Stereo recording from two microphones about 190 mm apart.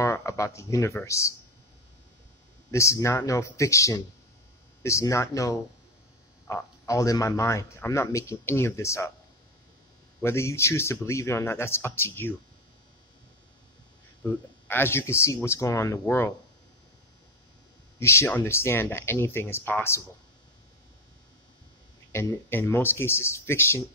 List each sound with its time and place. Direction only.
0.0 s speech: 15° left (ahead or behind)
2.7 s speech: 15° left (ahead or behind)
10.2 s speech: 15° left (ahead or behind)
14.7 s speech: 10° left (ahead or behind)
17.9 s speech: 15° left (ahead or behind)
22.1 s speech: 15° left (ahead or behind)